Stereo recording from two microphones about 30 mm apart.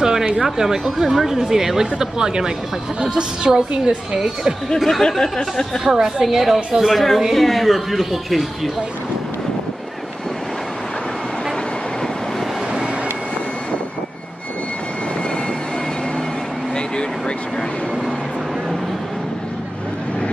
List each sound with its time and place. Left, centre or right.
0.0 s a sound: centre
0.4 s a woman's voice: centre
4.7 s speech: centre
5.2 s speech: centre
5.9 s a woman's voice: centre
6.9 s speech: centre